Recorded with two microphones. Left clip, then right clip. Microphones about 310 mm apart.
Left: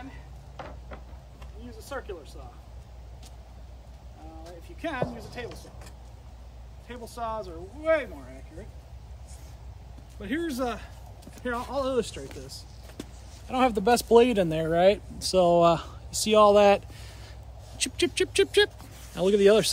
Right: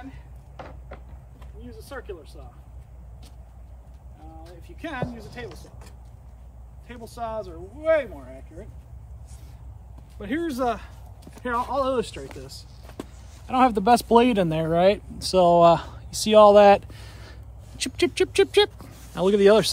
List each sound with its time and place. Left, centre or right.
0.6 s a sound: centre
1.7 s speech: centre
4.5 s speech: centre
6.9 s speech: centre
10.2 s a man's voice: centre